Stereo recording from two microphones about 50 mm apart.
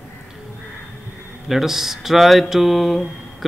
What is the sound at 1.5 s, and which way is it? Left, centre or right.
Speech, centre.